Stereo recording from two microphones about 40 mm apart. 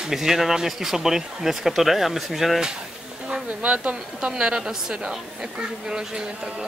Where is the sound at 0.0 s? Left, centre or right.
Centre.